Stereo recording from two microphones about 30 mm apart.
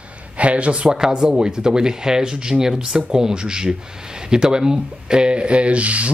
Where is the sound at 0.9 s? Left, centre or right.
Right.